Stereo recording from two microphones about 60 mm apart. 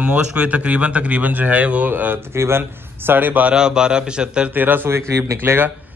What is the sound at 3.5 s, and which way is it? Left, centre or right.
Speech, centre.